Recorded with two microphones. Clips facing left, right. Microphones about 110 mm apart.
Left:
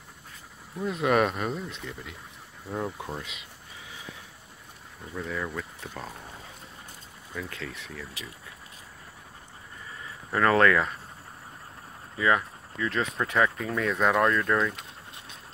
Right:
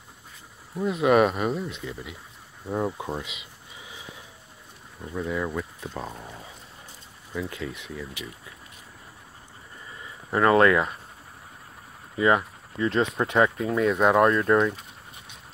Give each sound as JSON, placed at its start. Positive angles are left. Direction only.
{"t": 0.7, "sound": "speech", "side_deg": -5}
{"t": 5.1, "sound": "speech", "side_deg": -10}
{"t": 7.3, "sound": "speech", "side_deg": -15}
{"t": 8.2, "sound": "speech", "side_deg": 35}
{"t": 10.3, "sound": "speech", "side_deg": -15}
{"t": 12.2, "sound": "speech", "side_deg": -25}